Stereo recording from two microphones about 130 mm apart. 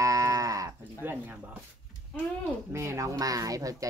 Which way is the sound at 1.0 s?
15° right (ahead or behind).